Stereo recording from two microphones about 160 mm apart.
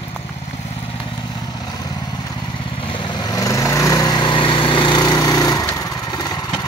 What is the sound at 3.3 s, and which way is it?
Lawn mower, 20° left (ahead or behind).